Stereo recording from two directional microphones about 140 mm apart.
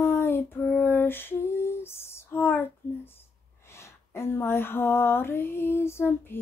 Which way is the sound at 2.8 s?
15° left (ahead or behind).